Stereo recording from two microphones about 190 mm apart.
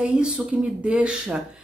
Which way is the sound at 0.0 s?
5° right (ahead or behind).